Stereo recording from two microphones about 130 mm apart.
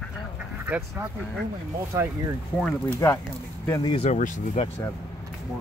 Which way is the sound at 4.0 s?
70° left (ahead or behind).